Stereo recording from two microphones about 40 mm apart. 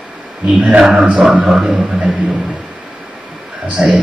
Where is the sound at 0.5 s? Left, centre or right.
Right.